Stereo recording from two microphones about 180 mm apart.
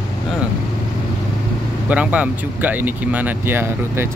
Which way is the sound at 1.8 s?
10° right (ahead or behind).